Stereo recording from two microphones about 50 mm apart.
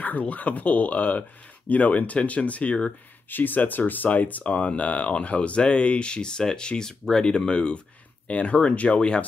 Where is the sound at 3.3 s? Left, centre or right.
Left; by 9.2 s centre.